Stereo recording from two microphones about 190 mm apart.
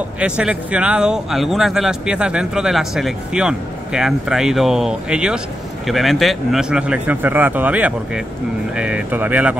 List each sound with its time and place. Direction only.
0.2 s speech: 5° right (ahead or behind)